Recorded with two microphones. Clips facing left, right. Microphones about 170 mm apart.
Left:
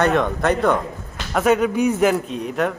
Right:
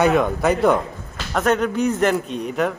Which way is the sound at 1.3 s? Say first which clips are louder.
Left 2 dB; 5° left (ahead or behind).